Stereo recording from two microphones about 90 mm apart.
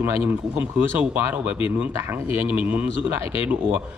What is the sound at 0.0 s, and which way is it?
Speech, 25° right (ahead or behind).